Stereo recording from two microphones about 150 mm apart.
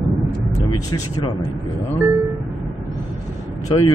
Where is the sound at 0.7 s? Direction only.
30° left (ahead or behind).